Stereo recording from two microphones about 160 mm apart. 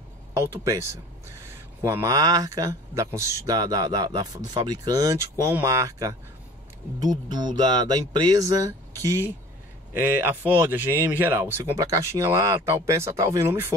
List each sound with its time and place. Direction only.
0.4 s speech: 15° right (ahead or behind)
1.8 s speech: 15° right (ahead or behind)